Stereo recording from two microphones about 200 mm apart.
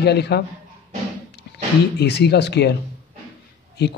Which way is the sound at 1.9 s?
55° left (ahead or behind).